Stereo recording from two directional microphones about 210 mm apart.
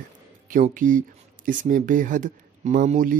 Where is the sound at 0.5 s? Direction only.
40° right (ahead or behind).